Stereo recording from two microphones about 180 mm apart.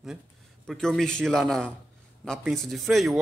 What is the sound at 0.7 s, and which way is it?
A man's voice, centre (ahead or behind).